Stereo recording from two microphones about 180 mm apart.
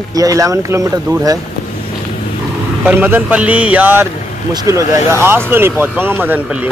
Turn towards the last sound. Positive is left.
turn(degrees=-10)  # may be behind; listen again after turning